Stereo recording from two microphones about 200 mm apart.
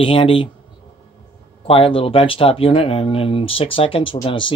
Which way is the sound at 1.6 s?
25° left (ahead or behind).